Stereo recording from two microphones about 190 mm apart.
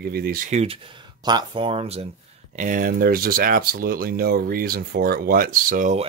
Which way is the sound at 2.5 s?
45° right (ahead or behind).